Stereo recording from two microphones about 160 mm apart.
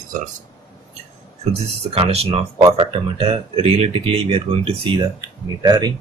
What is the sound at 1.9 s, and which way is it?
Speech, 40° right (ahead or behind).